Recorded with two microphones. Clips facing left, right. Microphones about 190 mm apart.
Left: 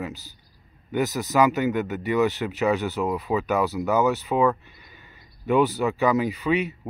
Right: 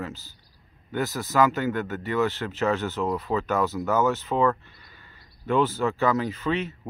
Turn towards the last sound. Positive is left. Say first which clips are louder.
# left 3 dB
turn(degrees=15)  # may be behind; listen again after turning